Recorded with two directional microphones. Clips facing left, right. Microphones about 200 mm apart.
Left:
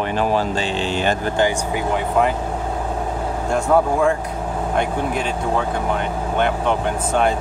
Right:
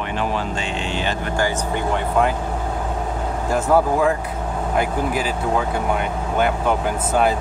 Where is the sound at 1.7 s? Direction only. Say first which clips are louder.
Left 1 dB; 5° left (ahead or behind).